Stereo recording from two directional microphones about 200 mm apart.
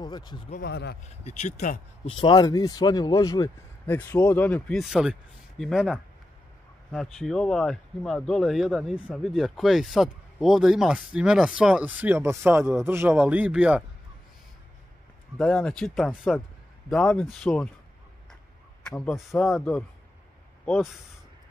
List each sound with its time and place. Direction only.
0.0 s speech: 20° left (ahead or behind)
0.6 s speech: 55° left (ahead or behind)
1.2 s speech: 35° left (ahead or behind); by 13.8 s 5° right (ahead or behind)
15.3 s speech: 5° left (ahead or behind)
18.9 s speech: 5° left (ahead or behind)
20.6 s speech: 5° left (ahead or behind)